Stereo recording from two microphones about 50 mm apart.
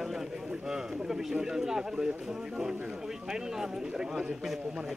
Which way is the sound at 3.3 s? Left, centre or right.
Centre.